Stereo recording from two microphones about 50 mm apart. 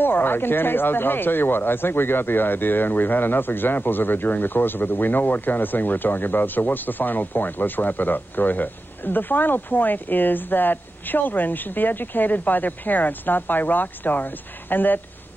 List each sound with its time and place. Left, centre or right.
0.0 s speech: left